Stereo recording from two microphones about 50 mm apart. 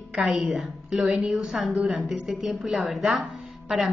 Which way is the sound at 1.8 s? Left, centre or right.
Centre.